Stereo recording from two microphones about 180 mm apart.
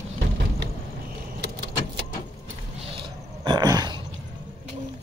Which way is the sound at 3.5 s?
20° right (ahead or behind).